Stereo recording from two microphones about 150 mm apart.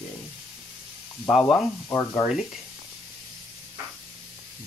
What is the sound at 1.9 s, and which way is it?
Speech, 15° left (ahead or behind).